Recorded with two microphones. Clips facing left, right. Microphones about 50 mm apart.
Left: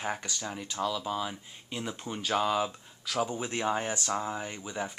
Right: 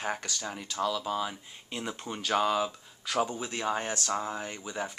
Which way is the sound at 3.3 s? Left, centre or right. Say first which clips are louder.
Left 2 dB; centre.